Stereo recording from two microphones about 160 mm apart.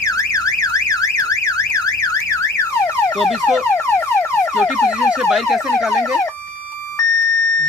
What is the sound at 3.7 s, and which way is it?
Car alarm, 15° left (ahead or behind).